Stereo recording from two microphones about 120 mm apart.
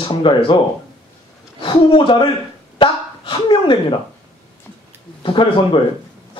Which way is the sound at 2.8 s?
45° left (ahead or behind).